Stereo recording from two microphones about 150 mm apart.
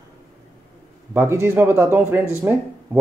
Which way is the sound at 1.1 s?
15° right (ahead or behind).